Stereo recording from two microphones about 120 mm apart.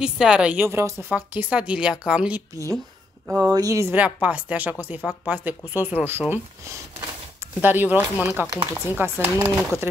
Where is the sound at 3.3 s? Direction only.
25° right (ahead or behind).